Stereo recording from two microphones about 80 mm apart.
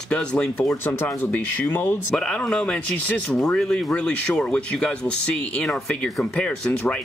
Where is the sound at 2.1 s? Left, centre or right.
Centre.